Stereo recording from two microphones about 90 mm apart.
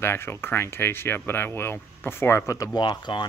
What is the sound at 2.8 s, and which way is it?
Speech, 55° left (ahead or behind).